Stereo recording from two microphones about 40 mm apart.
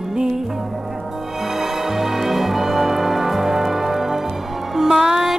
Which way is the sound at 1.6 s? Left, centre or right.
Centre.